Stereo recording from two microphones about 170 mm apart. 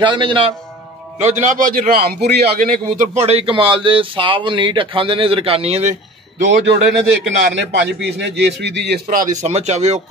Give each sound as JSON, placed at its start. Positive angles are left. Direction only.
{"t": 0.0, "sound": "a man's voice", "side_deg": -30}
{"t": 1.2, "sound": "a man's voice", "side_deg": -45}
{"t": 3.2, "sound": "speech", "side_deg": -35}
{"t": 7.2, "sound": "a man's voice", "side_deg": -90}
{"t": 9.1, "sound": "a man's voice", "side_deg": -45}